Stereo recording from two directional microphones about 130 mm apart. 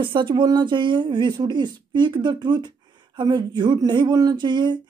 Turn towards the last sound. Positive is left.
turn(degrees=-35)  # may be behind; listen again after turning